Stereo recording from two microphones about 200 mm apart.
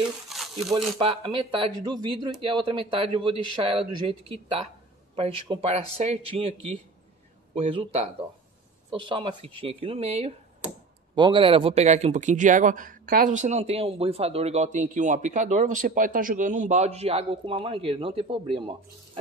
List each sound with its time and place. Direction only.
0.3 s crumpling: centre (ahead or behind)
0.7 s speech: 30° right (ahead or behind)
5.1 s speech: 30° right (ahead or behind)